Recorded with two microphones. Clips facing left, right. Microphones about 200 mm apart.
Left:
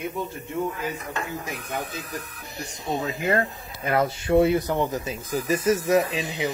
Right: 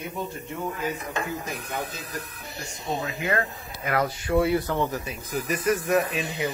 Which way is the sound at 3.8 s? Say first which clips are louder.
Left 3 dB; 25° left (ahead or behind).